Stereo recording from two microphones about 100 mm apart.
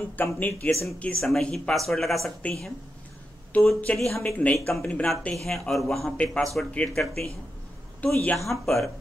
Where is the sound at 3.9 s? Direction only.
5° left (ahead or behind).